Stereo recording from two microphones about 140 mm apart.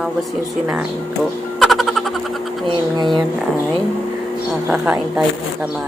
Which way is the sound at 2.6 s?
30° right (ahead or behind).